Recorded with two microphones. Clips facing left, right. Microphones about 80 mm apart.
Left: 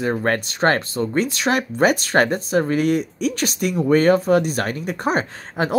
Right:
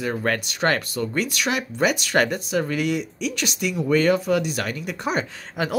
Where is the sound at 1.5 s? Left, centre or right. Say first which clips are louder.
Left 5 dB; left.